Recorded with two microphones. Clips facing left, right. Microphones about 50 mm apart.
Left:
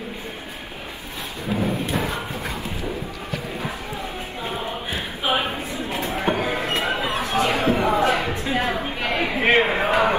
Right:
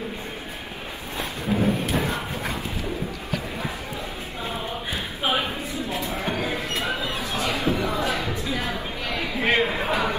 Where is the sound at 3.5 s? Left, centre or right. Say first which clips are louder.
Left 2 dB; left.